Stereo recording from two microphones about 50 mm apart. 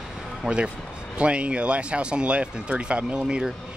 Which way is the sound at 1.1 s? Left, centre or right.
Right.